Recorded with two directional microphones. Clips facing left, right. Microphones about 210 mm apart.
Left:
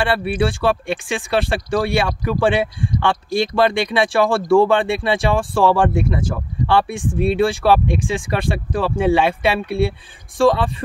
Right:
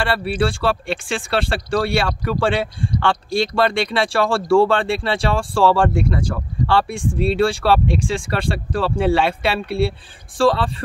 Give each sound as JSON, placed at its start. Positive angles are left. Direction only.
{"t": 0.4, "sound": "speech", "side_deg": 20}